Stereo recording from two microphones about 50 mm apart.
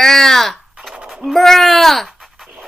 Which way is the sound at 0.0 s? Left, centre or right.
Centre.